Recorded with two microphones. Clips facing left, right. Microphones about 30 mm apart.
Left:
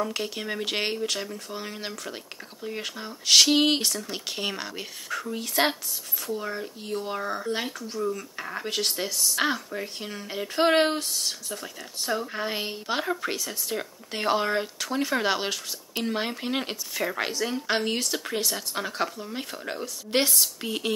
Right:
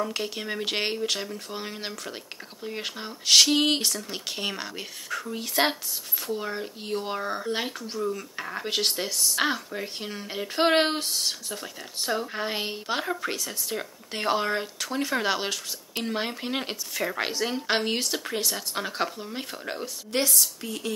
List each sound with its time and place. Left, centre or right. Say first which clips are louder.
0.0 s speech: even; centre
3.3 s speech: left 1 dB; centre
6.2 s speech: even; centre
7.2 s speech: even; centre
8.6 s speech: right 2 dB; centre
8.9 s speech: even; centre
12.3 s speech: even; centre
17.2 s speech: even; centre
18.2 s speech: even; centre
20.1 s a woman's voice: left 2 dB; left